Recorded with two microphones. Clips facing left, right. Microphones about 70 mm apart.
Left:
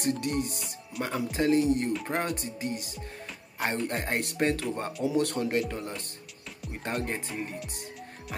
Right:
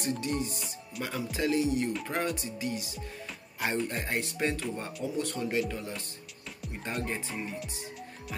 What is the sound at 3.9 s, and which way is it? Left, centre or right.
Speech, left.